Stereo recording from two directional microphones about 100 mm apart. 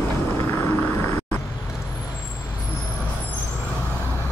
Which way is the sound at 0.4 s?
30° left (ahead or behind).